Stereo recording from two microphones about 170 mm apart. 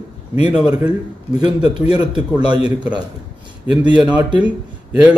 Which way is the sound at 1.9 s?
25° right (ahead or behind).